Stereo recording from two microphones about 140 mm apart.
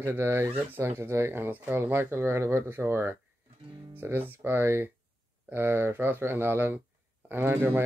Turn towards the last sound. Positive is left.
turn(degrees=-15)  # may be behind; listen again after turning